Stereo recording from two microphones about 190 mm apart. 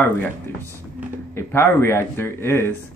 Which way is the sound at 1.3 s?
10° left (ahead or behind).